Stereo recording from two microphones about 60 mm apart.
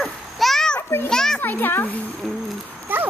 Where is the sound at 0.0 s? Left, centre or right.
Centre.